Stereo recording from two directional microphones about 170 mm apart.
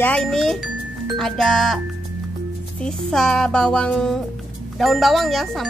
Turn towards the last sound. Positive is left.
turn(degrees=0)  # may be behind; listen again after turning